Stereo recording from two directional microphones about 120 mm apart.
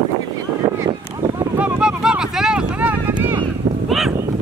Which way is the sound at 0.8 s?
30° right (ahead or behind).